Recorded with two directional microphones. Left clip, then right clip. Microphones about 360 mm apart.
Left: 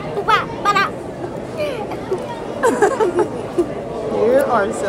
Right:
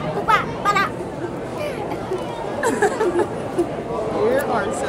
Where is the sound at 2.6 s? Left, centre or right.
Left.